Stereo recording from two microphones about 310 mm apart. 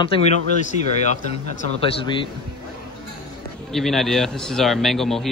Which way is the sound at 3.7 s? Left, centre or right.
Centre.